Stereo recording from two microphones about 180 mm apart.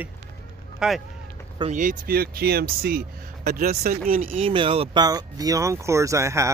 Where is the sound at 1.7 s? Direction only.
45° right (ahead or behind).